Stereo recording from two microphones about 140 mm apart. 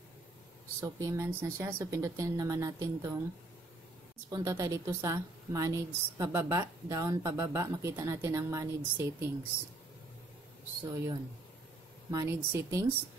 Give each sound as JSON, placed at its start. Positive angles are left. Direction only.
{"t": 0.7, "sound": "a woman's voice", "side_deg": -25}
{"t": 4.3, "sound": "a woman's voice", "side_deg": -25}
{"t": 12.1, "sound": "a woman's voice", "side_deg": -25}